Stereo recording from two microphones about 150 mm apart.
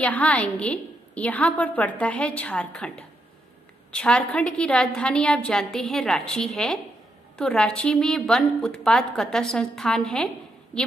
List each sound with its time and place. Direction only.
0.0 s a woman's voice: 10° left (ahead or behind)